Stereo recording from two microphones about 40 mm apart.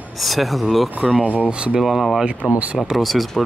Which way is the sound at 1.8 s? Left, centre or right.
Centre.